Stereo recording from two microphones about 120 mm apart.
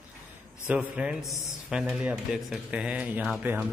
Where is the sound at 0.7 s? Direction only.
15° right (ahead or behind).